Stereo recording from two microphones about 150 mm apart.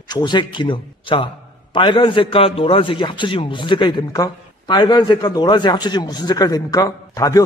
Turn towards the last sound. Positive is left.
turn(degrees=25)  # may be behind; listen again after turning